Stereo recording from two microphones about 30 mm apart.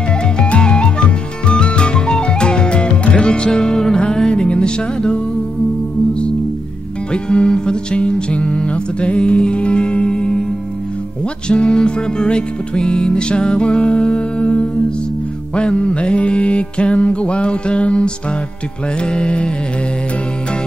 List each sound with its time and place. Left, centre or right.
0.4 s music: left
4.5 s music: left
7.1 s music: left
11.4 s music: left